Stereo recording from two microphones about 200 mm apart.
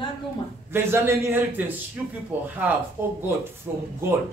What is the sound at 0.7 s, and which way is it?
Speech, 15° right (ahead or behind).